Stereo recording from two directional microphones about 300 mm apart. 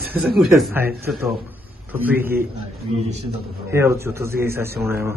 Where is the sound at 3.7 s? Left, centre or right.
Centre.